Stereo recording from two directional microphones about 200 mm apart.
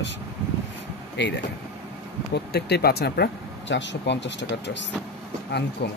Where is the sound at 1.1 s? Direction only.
60° left (ahead or behind).